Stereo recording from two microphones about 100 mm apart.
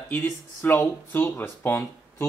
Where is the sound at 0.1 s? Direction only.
20° left (ahead or behind).